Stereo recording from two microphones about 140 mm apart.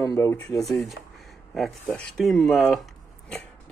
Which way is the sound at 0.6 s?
Centre (ahead or behind).